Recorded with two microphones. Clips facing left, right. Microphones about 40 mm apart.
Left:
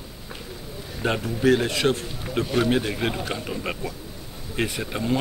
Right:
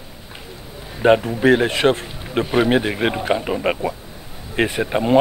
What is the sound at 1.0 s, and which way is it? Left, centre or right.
A man's voice, right.